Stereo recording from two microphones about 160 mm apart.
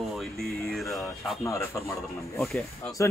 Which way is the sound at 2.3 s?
Centre (ahead or behind).